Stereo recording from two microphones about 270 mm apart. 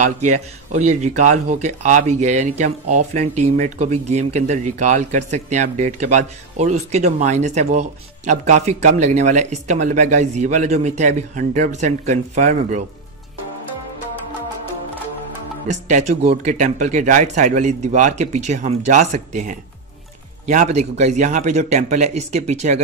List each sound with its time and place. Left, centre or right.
0.3 s speech: right
15.7 s speech: right